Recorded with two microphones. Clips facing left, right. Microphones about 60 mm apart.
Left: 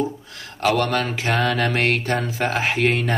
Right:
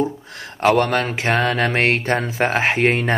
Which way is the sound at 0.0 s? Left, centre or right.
Right.